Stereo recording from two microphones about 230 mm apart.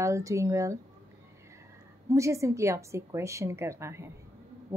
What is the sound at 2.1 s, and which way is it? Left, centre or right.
A woman's voice, centre.